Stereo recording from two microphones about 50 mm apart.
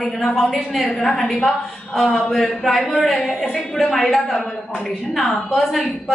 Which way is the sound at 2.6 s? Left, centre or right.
Centre.